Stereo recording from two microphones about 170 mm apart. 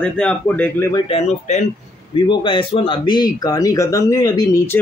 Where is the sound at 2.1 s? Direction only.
30° left (ahead or behind).